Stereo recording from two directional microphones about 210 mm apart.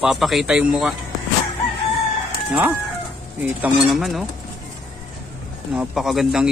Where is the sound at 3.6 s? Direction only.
Centre (ahead or behind).